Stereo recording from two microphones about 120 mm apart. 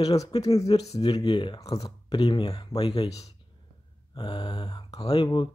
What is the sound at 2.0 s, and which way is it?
Speech, 40° left (ahead or behind).